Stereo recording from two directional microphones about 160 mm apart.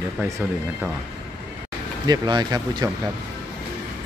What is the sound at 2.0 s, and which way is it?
Speech, 25° right (ahead or behind).